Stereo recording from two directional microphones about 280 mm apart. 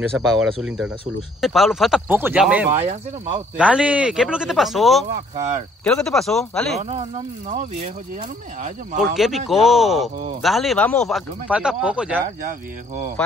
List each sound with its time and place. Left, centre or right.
0.1 s speech: centre
5.3 s speech: right
5.9 s speech: centre
6.8 s speech: right
9.0 s speech: centre